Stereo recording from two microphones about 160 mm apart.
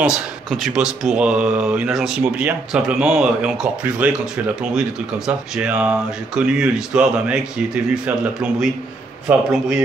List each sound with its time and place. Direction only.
0.0 s speech: centre (ahead or behind)